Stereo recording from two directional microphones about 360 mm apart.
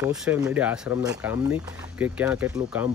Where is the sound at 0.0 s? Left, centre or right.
Centre.